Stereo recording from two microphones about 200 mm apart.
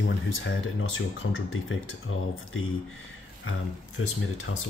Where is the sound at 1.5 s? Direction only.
85° left.